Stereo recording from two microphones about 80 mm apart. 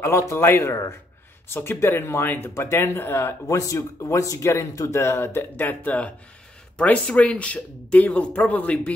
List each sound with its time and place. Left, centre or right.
0.3 s speech: left
3.4 s speech: left; by 8.9 s centre